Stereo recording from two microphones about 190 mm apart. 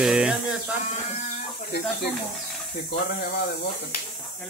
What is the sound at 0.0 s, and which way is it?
Speech, 5° right (ahead or behind).